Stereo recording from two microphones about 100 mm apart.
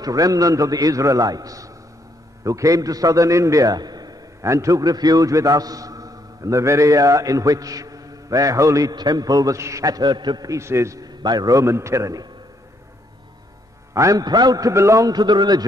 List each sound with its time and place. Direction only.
0.0 s a man's voice: 35° right (ahead or behind)
10.5 s a man's voice: 25° right (ahead or behind)
11.1 s a man's voice: 40° right (ahead or behind)
13.9 s a man's voice: 35° right (ahead or behind)